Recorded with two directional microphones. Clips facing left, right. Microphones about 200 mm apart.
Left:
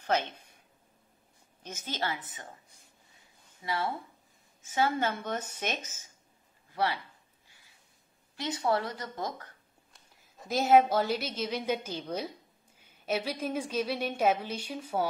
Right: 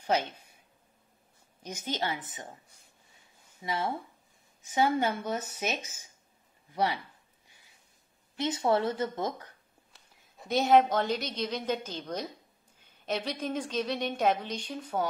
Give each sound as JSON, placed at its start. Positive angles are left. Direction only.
{"t": 0.0, "sound": "speech", "side_deg": -10}
{"t": 1.6, "sound": "speech", "side_deg": -15}
{"t": 3.6, "sound": "speech", "side_deg": -20}
{"t": 8.4, "sound": "speech", "side_deg": -25}
{"t": 9.9, "sound": "a woman's voice", "side_deg": 0}